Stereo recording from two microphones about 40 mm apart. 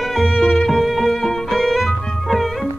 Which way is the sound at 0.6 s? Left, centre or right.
Centre.